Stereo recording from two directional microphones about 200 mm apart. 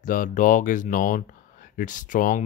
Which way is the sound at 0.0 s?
40° left (ahead or behind).